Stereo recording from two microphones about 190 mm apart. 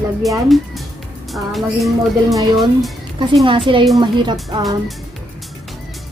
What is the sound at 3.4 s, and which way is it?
Speech, 25° right (ahead or behind).